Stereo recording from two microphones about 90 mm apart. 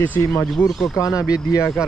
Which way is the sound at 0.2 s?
35° left (ahead or behind).